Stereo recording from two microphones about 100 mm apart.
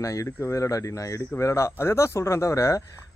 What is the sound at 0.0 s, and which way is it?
Speech, 35° left (ahead or behind).